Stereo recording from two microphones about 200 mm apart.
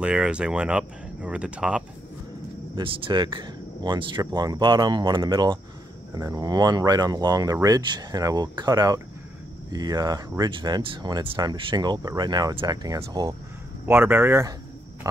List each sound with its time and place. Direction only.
0.0 s speech: 5° right (ahead or behind)
2.7 s speech: 25° right (ahead or behind)